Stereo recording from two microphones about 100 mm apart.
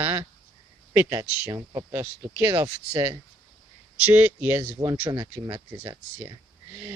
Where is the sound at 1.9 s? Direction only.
20° right (ahead or behind).